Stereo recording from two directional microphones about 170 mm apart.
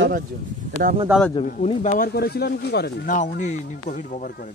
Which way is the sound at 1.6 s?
45° left (ahead or behind).